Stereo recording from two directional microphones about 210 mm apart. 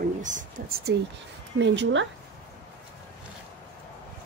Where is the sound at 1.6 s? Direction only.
60° right (ahead or behind).